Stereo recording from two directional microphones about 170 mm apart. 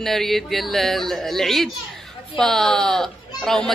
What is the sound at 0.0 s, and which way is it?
A woman's voice, centre (ahead or behind).